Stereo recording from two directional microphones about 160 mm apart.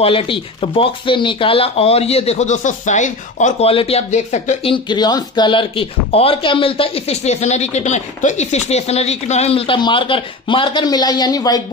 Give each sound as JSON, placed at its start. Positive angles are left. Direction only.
{"t": 0.0, "sound": "speech", "side_deg": 35}
{"t": 4.7, "sound": "speech", "side_deg": 25}